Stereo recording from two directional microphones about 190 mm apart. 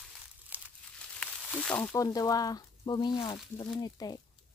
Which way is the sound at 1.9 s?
20° left (ahead or behind).